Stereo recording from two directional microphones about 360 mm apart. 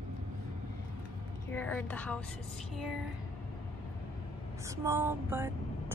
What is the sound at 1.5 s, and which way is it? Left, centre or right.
A woman's voice, centre.